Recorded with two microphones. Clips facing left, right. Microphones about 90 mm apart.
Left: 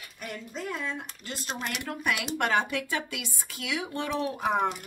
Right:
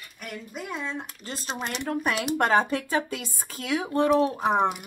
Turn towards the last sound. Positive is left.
turn(degrees=-35)  # may be behind; listen again after turning